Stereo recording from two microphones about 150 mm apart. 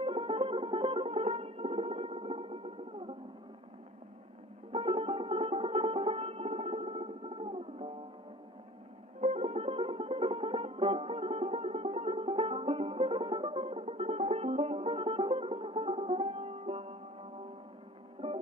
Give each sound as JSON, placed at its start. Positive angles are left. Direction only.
{"t": 0.0, "sound": "music", "side_deg": -35}
{"t": 4.7, "sound": "music", "side_deg": -35}
{"t": 9.2, "sound": "music", "side_deg": -45}